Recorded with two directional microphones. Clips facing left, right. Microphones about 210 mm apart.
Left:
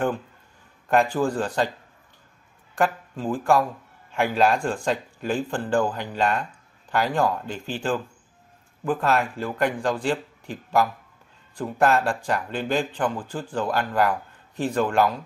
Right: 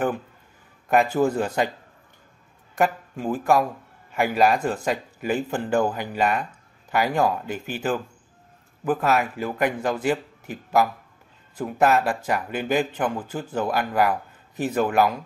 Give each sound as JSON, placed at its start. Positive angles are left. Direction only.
{"t": 1.0, "sound": "speech", "side_deg": -20}
{"t": 1.3, "sound": "speech", "side_deg": -10}
{"t": 2.8, "sound": "speech", "side_deg": -10}